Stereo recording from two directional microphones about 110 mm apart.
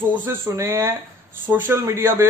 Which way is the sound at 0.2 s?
20° right (ahead or behind).